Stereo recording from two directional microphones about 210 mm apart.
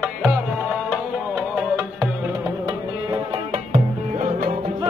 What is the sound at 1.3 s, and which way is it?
Music, 10° right (ahead or behind).